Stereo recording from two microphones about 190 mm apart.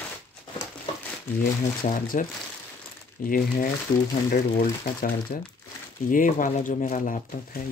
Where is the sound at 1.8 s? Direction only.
45° left (ahead or behind).